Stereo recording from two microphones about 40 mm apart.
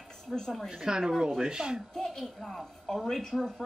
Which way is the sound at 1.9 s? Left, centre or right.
Centre.